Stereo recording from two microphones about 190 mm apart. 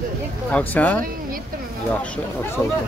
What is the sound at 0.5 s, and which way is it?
Speech, 10° left (ahead or behind).